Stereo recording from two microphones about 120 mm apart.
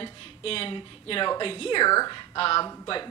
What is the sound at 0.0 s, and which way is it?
A woman's voice, 50° left (ahead or behind).